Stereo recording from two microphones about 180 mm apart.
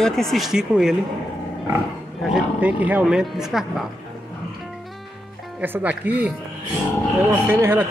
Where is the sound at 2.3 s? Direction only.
5° right (ahead or behind).